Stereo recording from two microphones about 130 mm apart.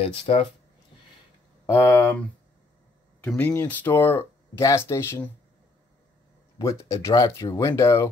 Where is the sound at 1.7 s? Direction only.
15° left (ahead or behind).